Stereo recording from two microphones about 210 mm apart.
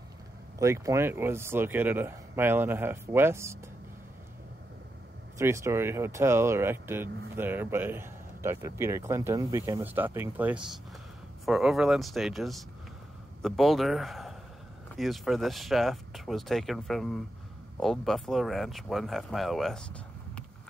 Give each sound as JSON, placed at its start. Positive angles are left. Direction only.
{"t": 0.6, "sound": "speech", "side_deg": -15}
{"t": 5.4, "sound": "speech", "side_deg": -15}